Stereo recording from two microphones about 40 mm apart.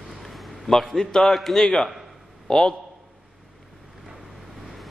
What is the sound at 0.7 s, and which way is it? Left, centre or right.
A man's voice, centre.